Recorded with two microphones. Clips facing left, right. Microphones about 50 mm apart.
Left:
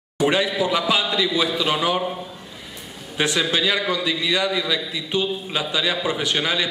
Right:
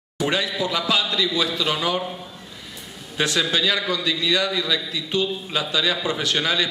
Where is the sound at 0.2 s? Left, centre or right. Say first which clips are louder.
Left 3 dB; centre.